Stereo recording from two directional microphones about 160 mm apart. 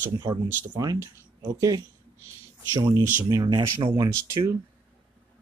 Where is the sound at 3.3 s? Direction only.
25° right (ahead or behind).